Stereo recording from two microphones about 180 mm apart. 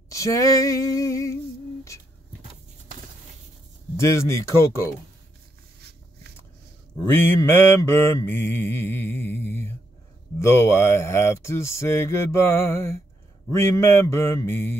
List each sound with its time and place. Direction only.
0.1 s a sound: 15° left (ahead or behind)
0.9 s mantra: 20° left (ahead or behind)
4.0 s mantra: 15° left (ahead or behind)
7.0 s mantra: 10° left (ahead or behind)